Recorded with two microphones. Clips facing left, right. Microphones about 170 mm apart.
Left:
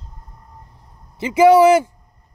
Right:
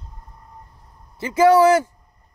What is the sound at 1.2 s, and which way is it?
Speech, 15° left (ahead or behind).